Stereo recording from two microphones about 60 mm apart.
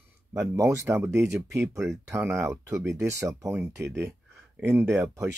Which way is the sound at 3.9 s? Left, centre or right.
Right.